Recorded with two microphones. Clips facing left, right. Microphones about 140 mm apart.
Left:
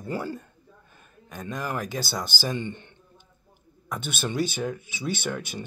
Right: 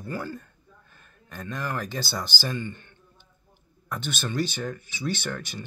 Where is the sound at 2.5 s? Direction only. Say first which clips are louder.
Left 2 dB; 20° left (ahead or behind).